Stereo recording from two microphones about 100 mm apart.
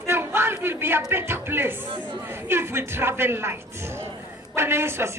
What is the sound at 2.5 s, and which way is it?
A woman's voice, 25° right (ahead or behind).